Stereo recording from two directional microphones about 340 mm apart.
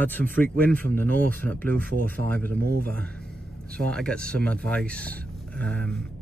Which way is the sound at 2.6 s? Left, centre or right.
Right.